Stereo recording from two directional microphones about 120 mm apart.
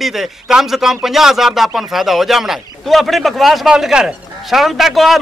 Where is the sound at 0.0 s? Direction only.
Centre (ahead or behind).